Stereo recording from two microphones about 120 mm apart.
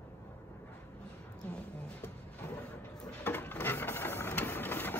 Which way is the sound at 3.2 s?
15° left (ahead or behind).